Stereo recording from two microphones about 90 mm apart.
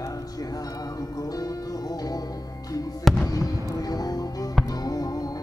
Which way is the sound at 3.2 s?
45° left (ahead or behind).